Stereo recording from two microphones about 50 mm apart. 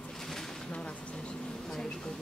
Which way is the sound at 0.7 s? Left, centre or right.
Left.